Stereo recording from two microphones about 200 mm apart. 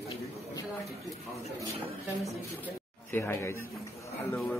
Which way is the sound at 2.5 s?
10° left (ahead or behind).